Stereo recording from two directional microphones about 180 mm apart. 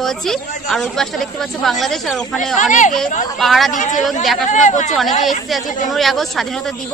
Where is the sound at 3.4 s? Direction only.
Centre (ahead or behind).